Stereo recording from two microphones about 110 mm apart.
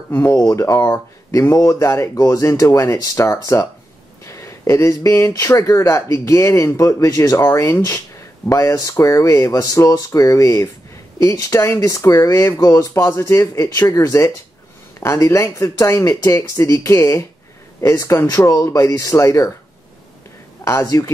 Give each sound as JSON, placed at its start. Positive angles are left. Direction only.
{"t": 0.1, "sound": "speech", "side_deg": 25}
{"t": 20.8, "sound": "speech", "side_deg": 30}